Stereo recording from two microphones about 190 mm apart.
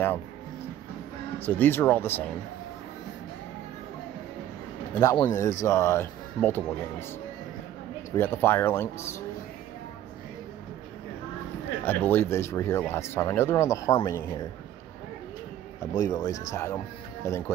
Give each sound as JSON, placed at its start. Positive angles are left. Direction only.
{"t": 1.4, "sound": "speech", "side_deg": 10}
{"t": 5.0, "sound": "speech", "side_deg": 20}
{"t": 8.2, "sound": "speech", "side_deg": 10}
{"t": 11.8, "sound": "speech", "side_deg": 10}
{"t": 15.9, "sound": "speech", "side_deg": 20}